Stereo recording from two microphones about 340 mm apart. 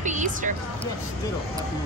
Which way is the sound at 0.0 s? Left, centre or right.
Right.